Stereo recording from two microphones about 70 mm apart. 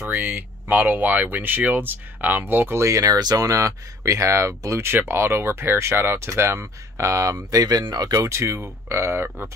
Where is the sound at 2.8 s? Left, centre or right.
Right.